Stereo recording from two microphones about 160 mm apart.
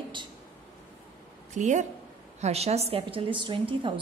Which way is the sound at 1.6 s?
50° right (ahead or behind).